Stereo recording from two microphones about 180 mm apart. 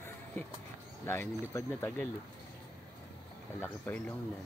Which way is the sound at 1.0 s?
15° left (ahead or behind).